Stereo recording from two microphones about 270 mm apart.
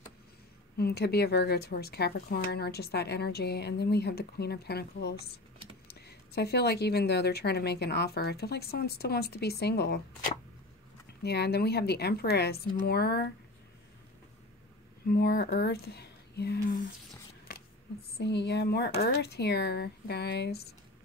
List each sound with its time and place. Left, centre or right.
0.7 s a woman's voice: left
15.0 s speech: left
17.5 s a sound: left
18.1 s a woman's voice: left